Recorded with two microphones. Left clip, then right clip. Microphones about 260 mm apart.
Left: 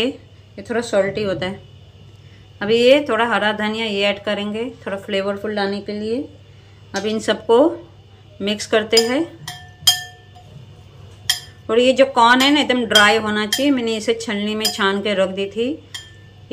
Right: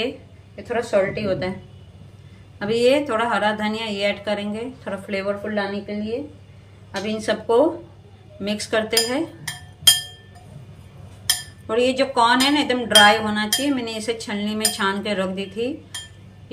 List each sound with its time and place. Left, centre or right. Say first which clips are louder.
0.6 s a woman's voice: left 2 dB; left
2.6 s speech: left 5 dB; centre
7.0 s speech: left 3 dB; centre
11.6 s speech: left 6 dB; centre